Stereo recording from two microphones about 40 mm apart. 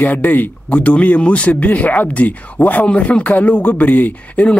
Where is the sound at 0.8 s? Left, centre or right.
Left.